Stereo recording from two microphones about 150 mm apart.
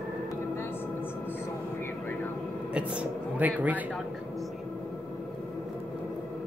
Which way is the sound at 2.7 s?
10° right (ahead or behind).